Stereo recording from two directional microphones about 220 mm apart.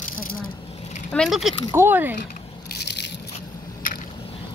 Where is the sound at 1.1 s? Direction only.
Centre (ahead or behind).